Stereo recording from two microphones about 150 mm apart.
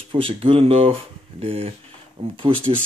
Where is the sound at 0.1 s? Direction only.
35° right (ahead or behind).